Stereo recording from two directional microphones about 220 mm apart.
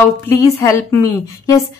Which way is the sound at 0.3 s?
15° left (ahead or behind).